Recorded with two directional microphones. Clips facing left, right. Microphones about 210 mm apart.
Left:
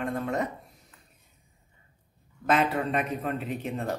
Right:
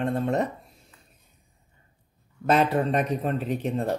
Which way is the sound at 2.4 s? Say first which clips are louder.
Right 4 dB; 35° right (ahead or behind).